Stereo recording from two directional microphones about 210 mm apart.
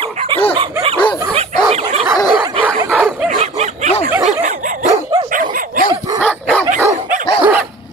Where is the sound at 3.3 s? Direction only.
35° right (ahead or behind).